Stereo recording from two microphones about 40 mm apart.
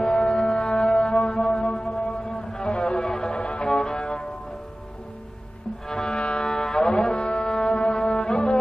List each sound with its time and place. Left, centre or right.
0.0 s music: centre
0.7 s a sound: centre
1.0 s wind instrument: left
1.5 s music: left
1.9 s a sound: centre
2.3 s music: left
3.6 s music: centre
5.9 s music: centre
6.1 s music: left